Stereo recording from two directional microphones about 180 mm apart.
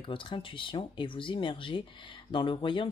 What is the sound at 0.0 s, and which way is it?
Speech, 30° left (ahead or behind).